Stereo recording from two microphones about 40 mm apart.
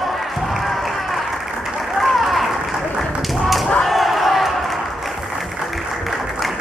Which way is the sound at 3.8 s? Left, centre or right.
Centre.